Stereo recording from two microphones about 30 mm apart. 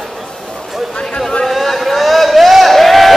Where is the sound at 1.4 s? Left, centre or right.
Centre.